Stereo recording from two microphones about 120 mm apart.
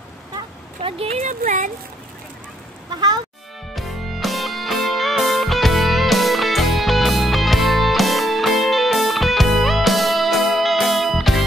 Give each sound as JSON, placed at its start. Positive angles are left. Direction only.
{"t": 0.8, "sound": "speech", "side_deg": -55}
{"t": 1.2, "sound": "speech", "side_deg": -90}
{"t": 2.9, "sound": "speech", "side_deg": -35}
{"t": 3.7, "sound": "music", "side_deg": 0}